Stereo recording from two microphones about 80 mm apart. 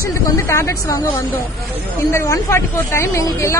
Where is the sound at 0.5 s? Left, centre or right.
Left.